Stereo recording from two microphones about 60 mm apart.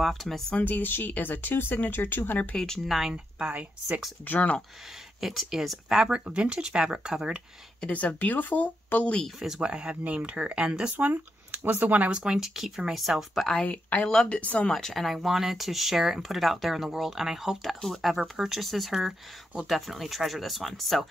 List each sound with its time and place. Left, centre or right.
0.0 s speech: centre
0.6 s speech: left
2.5 s speech: centre
2.9 s speech: centre
3.3 s speech: right
4.3 s speech: left
5.2 s speech: centre
5.9 s speech: centre
7.8 s speech: left
9.4 s speech: centre
11.1 s speech: right
12.1 s speech: centre
13.7 s speech: left
14.7 s speech: centre